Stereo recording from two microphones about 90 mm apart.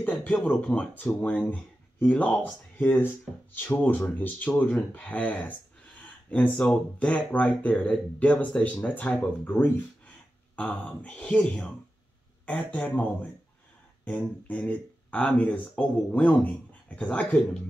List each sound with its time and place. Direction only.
0.0 s speech: 15° left (ahead or behind)
5.9 s a sound: 15° left (ahead or behind)
6.5 s speech: 5° left (ahead or behind)
14.5 s speech: 15° left (ahead or behind)